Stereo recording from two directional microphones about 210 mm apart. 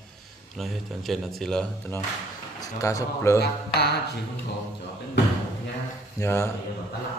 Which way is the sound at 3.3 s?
50° left (ahead or behind).